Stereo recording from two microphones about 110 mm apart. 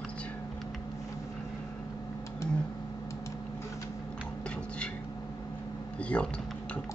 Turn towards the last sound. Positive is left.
turn(degrees=10)  # may be behind; listen again after turning